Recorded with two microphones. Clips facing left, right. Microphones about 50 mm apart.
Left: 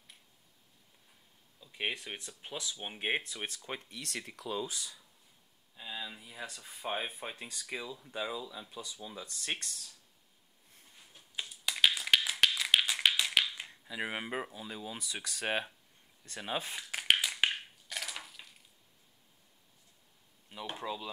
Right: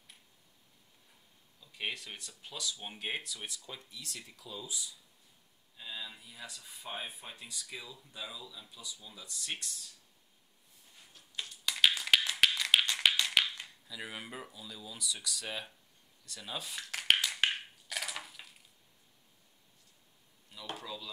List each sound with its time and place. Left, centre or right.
1.6 s speech: left
5.8 s a sound: centre
6.3 s speech: left
11.1 s finger snapping: centre
12.3 s tap: centre
13.8 s speech: left
17.0 s crushing: centre
20.7 s speech: left